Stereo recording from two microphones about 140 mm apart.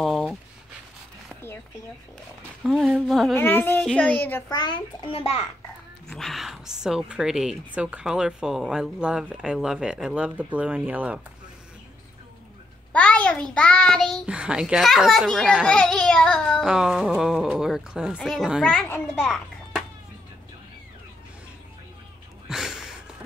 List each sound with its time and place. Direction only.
0.0 s a sound: centre (ahead or behind)
2.6 s speech: centre (ahead or behind)
3.3 s a child's voice: 15° left (ahead or behind)
4.5 s a child's voice: 30° left (ahead or behind)
6.0 s speech: 5° left (ahead or behind)
12.9 s speech: 10° left (ahead or behind)
19.1 s children playing: 5° left (ahead or behind)
22.5 s a sound: 5° right (ahead or behind)